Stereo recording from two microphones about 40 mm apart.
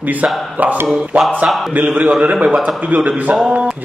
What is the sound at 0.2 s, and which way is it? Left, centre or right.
A man's voice, right.